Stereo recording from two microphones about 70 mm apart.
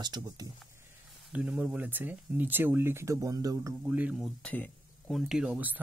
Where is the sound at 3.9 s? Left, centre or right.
Right.